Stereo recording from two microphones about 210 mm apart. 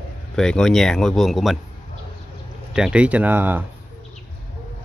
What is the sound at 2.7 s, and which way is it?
Speech, 5° right (ahead or behind).